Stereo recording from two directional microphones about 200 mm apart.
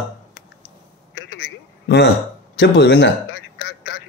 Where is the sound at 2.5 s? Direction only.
55° left (ahead or behind).